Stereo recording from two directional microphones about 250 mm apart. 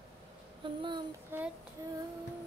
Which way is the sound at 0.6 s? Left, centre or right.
Centre.